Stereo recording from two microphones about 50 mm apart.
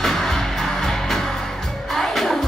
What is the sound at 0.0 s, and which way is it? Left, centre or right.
Music, centre.